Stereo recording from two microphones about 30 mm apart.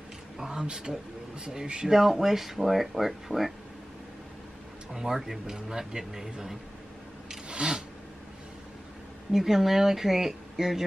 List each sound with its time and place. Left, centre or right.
0.5 s speech: right
2.0 s speech: centre
4.9 s speech: centre
7.4 s a sound: right
9.3 s speech: centre